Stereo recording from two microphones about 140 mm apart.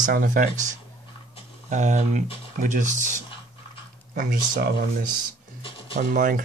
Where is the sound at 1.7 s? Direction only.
55° right (ahead or behind).